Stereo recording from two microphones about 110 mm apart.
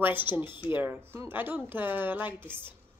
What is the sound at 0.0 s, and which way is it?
A woman's voice, 20° right (ahead or behind).